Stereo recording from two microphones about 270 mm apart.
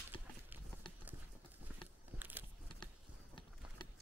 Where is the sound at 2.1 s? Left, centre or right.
Centre.